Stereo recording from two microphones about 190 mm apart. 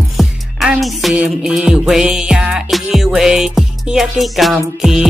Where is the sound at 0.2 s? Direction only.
Centre (ahead or behind).